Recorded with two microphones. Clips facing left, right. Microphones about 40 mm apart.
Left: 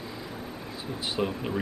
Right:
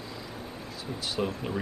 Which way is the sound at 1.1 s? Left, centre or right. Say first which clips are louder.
Left 2 dB; centre.